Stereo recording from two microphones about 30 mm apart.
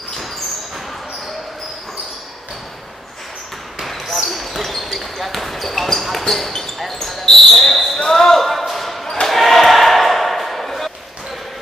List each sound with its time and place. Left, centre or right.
3.8 s basketball bounce: centre
8.0 s basketball bounce: centre
8.4 s a sound: centre
9.3 s basketball bounce: centre